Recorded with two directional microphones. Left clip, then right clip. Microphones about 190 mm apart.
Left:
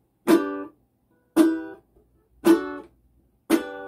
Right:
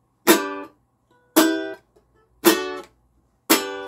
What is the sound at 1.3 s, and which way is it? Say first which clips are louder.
Music: right 2 dB; 45° right (ahead or behind).